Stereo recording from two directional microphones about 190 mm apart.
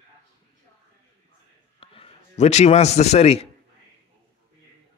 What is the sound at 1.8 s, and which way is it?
A man's voice, 30° left (ahead or behind).